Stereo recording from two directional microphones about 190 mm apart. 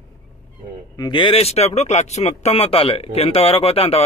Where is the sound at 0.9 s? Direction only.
25° left (ahead or behind).